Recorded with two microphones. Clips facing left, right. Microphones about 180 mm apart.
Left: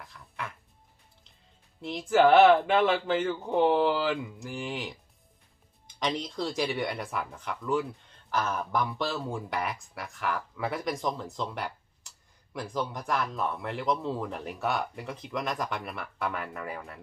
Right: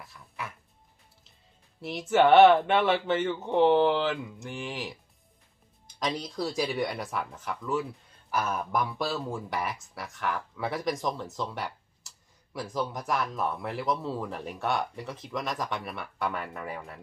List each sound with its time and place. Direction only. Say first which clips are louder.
0.0 s speech: even; 5° right (ahead or behind)
1.8 s speech: even; 5° right (ahead or behind)
6.0 s speech: even; 5° right (ahead or behind)